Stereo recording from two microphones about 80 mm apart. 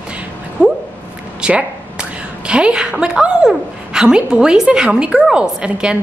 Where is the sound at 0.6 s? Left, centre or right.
Centre.